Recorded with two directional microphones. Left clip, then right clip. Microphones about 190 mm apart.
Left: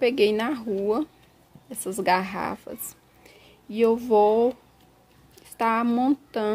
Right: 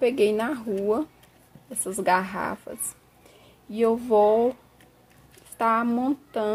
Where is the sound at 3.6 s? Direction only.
45° left (ahead or behind).